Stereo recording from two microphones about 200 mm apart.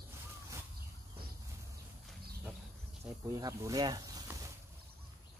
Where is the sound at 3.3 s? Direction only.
15° right (ahead or behind).